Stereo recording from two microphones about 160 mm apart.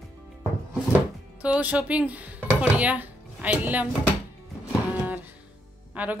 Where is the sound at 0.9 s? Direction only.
10° right (ahead or behind).